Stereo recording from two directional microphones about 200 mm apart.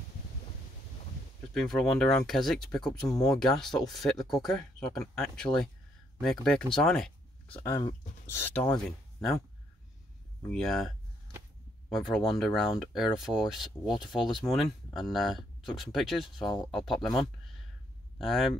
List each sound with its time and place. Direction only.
1.5 s speech: centre (ahead or behind)
10.5 s speech: centre (ahead or behind)
11.9 s speech: centre (ahead or behind)
14.1 s speech: 25° left (ahead or behind)
14.4 s speech: centre (ahead or behind)
16.4 s speech: 20° left (ahead or behind)
16.8 s speech: centre (ahead or behind)